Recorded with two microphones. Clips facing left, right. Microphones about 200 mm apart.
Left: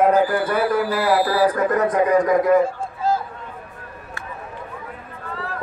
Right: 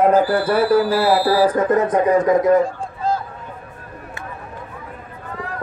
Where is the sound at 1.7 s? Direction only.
25° right (ahead or behind).